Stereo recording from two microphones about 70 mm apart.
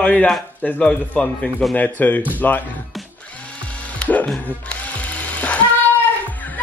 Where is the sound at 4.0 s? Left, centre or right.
Left.